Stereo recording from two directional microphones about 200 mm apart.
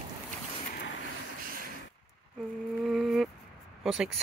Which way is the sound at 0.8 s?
65° left (ahead or behind).